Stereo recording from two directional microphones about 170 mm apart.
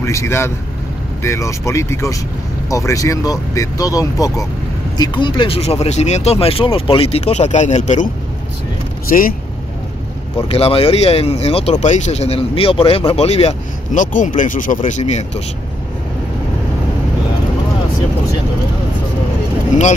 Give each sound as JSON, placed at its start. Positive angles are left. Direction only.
{"t": 0.0, "sound": "speech", "side_deg": 15}
{"t": 10.3, "sound": "speech", "side_deg": 35}